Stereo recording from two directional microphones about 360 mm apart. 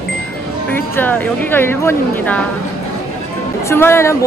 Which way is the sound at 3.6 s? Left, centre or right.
Centre.